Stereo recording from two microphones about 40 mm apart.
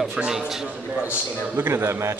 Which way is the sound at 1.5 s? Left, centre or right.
Right.